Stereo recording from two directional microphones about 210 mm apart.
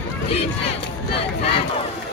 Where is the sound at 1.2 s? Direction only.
25° left (ahead or behind).